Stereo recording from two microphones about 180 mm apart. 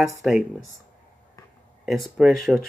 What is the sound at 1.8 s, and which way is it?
Speech, centre (ahead or behind).